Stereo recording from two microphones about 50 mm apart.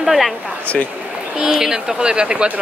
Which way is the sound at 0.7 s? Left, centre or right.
Left.